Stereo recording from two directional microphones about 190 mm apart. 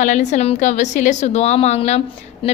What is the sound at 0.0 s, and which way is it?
A woman's voice, 40° left (ahead or behind).